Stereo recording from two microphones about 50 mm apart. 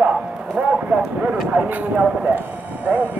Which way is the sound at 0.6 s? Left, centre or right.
Right.